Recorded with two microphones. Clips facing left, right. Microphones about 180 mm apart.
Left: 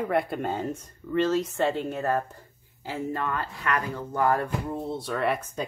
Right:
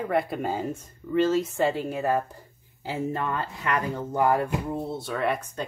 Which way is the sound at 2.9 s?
20° right (ahead or behind).